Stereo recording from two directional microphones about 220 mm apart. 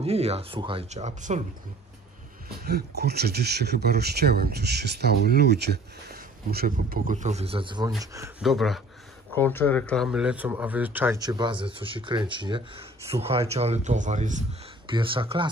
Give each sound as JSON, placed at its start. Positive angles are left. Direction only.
{"t": 0.0, "sound": "speech", "side_deg": -30}
{"t": 2.6, "sound": "speech", "side_deg": -45}
{"t": 8.4, "sound": "speech", "side_deg": 0}
{"t": 9.3, "sound": "speech", "side_deg": 10}
{"t": 14.9, "sound": "speech", "side_deg": -20}